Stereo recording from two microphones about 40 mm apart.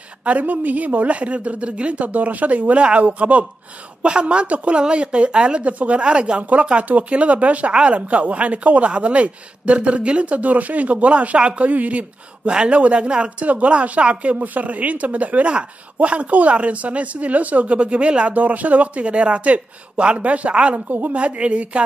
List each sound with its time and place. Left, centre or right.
0.2 s a woman's voice: right
18.3 s speech: right